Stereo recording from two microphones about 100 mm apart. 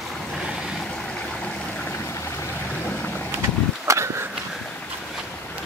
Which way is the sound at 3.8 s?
30° right (ahead or behind).